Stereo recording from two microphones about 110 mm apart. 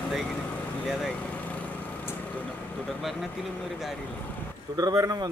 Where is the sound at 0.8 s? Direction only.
Centre (ahead or behind).